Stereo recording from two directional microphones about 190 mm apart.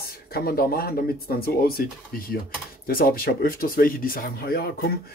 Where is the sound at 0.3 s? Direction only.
55° left (ahead or behind).